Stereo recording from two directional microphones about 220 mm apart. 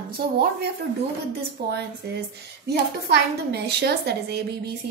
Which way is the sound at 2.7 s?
45° right (ahead or behind).